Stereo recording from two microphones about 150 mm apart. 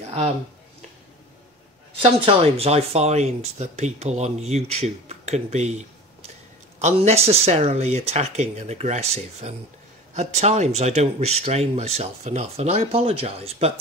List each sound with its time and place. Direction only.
2.0 s speech: 40° right (ahead or behind)